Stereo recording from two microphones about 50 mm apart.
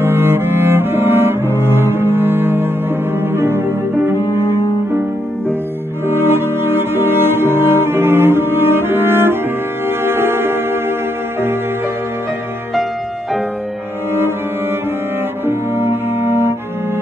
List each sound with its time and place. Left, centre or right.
0.0 s cello: right
3.2 s music: right
6.0 s music: right
15.4 s cello: right